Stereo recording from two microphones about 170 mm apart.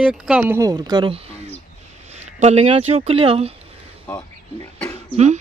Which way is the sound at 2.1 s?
40° right (ahead or behind).